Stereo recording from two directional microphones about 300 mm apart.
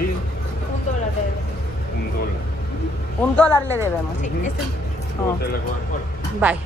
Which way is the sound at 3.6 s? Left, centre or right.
Centre.